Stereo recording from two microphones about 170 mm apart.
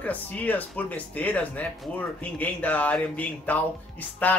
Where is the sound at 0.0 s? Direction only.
10° left (ahead or behind).